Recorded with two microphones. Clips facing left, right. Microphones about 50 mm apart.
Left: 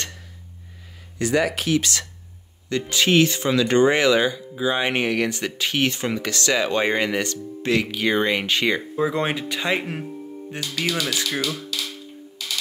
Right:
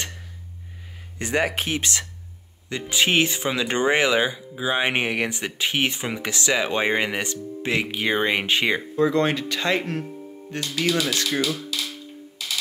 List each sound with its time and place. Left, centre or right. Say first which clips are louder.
1.1 s speech: left 2 dB; right
2.7 s speech: left 2 dB; centre
8.9 s speech: right 2 dB; centre